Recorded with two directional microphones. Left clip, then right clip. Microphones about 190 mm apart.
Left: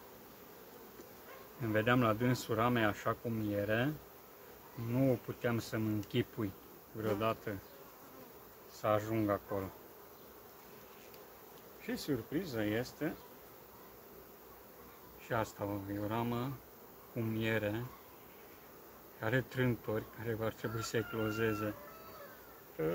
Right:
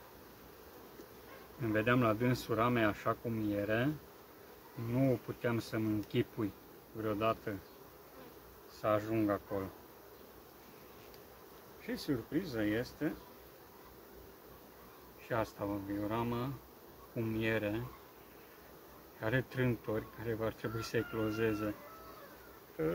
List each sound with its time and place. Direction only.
1.6 s speech: 10° left (ahead or behind)
4.9 s speech: 10° left (ahead or behind)
8.8 s speech: 10° left (ahead or behind)
11.8 s speech: 15° left (ahead or behind)
15.2 s speech: 10° left (ahead or behind)
19.1 s speech: 10° left (ahead or behind)
22.8 s speech: 15° left (ahead or behind)